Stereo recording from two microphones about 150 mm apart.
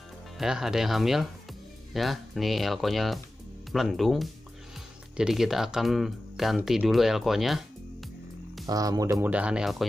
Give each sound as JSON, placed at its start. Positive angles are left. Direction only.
{"t": 0.4, "sound": "speech", "side_deg": -5}
{"t": 8.6, "sound": "speech", "side_deg": -25}
{"t": 9.2, "sound": "speech", "side_deg": -10}